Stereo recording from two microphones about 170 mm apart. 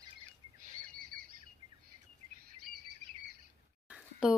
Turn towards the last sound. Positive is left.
turn(degrees=-5)  # may be behind; listen again after turning